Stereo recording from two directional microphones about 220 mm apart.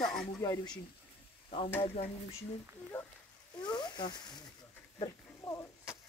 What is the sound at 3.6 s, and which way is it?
Speech, 20° left (ahead or behind).